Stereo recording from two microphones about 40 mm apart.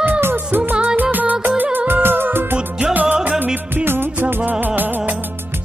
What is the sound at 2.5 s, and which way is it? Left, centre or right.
Music, right.